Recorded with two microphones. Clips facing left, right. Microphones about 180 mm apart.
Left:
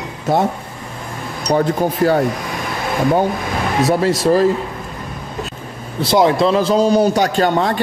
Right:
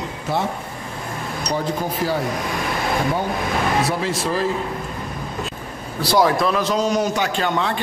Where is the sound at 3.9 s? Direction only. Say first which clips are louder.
Left 8 dB; 40° left (ahead or behind).